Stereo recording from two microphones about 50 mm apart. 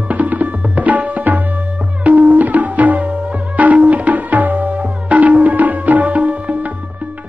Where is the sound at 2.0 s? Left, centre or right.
Right.